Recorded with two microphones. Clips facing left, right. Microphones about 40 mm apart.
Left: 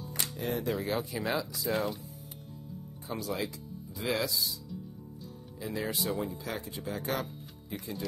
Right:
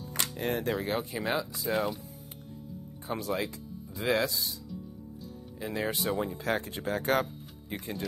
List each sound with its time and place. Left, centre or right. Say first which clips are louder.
0.4 s speech: right 2 dB; right
0.7 s speech: right 1 dB; right
1.7 s speech: right 2 dB; centre
3.1 s speech: right 3 dB; right
5.6 s speech: right 2 dB; right